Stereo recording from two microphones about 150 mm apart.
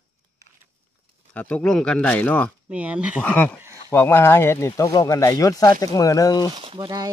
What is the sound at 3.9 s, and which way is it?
Speech, 15° left (ahead or behind).